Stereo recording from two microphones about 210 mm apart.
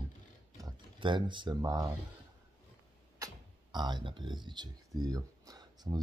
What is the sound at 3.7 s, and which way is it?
Speech, 20° right (ahead or behind).